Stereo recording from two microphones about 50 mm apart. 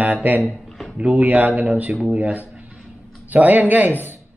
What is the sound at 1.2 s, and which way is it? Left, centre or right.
Speech, right.